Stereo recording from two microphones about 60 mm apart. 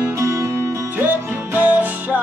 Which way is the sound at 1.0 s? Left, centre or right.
Right.